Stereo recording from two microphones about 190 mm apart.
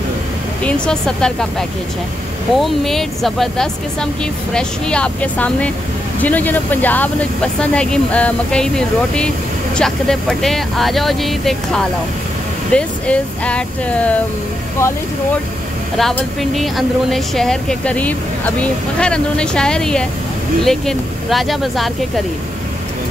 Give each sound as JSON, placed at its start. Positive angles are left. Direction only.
{"t": 0.7, "sound": "speech", "side_deg": 5}
{"t": 16.0, "sound": "speech", "side_deg": 0}